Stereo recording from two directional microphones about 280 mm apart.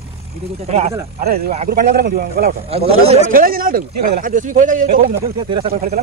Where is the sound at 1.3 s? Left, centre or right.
Right.